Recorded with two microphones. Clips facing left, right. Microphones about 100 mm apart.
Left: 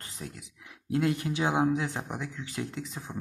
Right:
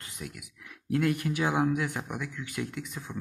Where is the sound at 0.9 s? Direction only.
25° left (ahead or behind).